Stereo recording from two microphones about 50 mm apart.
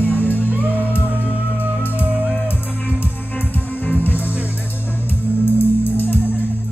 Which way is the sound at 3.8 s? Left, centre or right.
Left.